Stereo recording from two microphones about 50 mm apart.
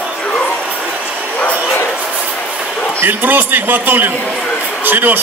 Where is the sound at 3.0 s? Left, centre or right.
Right.